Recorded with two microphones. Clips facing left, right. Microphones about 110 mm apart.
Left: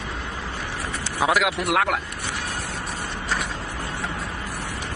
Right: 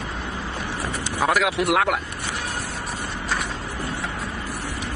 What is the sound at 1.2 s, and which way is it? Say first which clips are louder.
Speech: right 1 dB; centre (ahead or behind).